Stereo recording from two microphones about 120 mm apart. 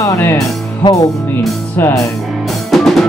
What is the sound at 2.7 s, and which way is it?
Music, centre (ahead or behind).